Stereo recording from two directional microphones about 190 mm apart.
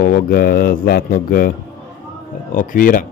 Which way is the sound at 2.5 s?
45° left (ahead or behind).